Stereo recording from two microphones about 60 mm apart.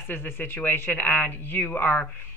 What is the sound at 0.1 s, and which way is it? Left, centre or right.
A woman's voice, left.